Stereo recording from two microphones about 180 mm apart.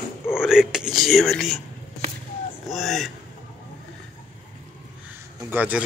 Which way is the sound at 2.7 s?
Centre (ahead or behind).